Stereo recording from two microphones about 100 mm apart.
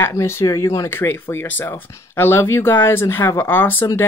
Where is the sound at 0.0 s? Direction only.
25° left (ahead or behind).